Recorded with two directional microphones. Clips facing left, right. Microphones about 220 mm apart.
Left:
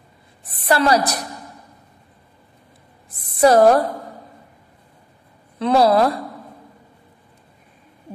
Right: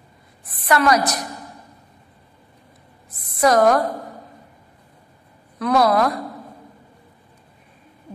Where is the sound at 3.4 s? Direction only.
30° left (ahead or behind).